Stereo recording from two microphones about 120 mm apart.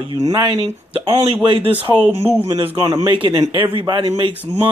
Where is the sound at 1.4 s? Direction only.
45° right (ahead or behind).